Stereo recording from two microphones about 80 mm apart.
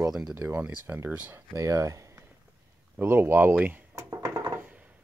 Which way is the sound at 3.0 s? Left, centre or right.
Right.